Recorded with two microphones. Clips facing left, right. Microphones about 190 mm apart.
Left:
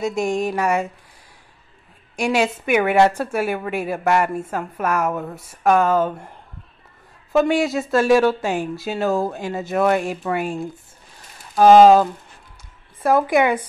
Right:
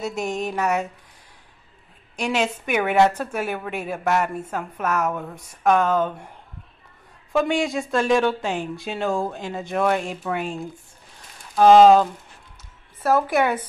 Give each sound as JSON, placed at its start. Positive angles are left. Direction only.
{"t": 0.0, "sound": "a woman's voice", "side_deg": 10}
{"t": 2.1, "sound": "a woman's voice", "side_deg": 10}
{"t": 7.3, "sound": "a woman's voice", "side_deg": 5}